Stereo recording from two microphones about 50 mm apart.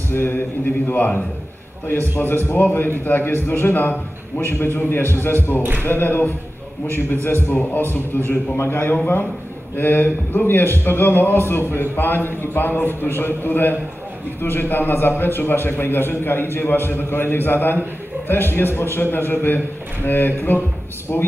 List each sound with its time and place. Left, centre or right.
0.1 s speech: left
0.8 s a man's voice: left
5.6 s speech: right
5.9 s a man's voice: left
8.3 s a man's voice: left
21.1 s speech: left